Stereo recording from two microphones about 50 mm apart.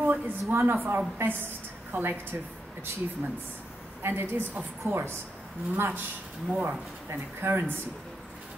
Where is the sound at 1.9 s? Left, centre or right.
Right.